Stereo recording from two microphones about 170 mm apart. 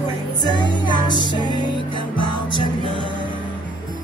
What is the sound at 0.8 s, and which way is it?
Music, 25° left (ahead or behind).